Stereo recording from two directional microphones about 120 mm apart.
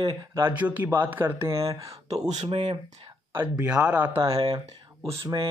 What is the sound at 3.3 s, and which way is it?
Speech, 10° right (ahead or behind).